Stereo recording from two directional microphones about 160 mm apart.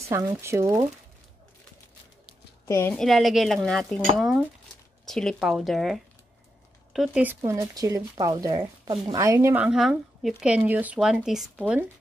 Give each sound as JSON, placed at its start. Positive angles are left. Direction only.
{"t": 0.0, "sound": "speech", "side_deg": -20}
{"t": 2.6, "sound": "a woman's voice", "side_deg": 15}
{"t": 2.9, "sound": "speech", "side_deg": 0}
{"t": 7.2, "sound": "speech", "side_deg": -15}